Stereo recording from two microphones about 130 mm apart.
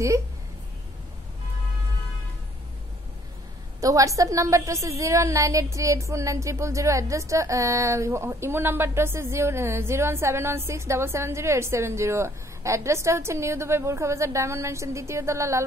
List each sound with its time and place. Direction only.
3.8 s a woman's voice: 25° right (ahead or behind)